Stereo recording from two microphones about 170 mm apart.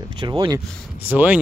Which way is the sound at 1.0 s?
10° right (ahead or behind).